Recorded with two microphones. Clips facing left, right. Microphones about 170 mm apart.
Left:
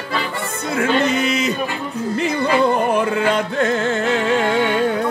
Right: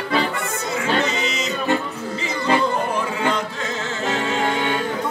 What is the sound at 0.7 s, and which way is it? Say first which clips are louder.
Music: left 5 dB; 55° left (ahead or behind).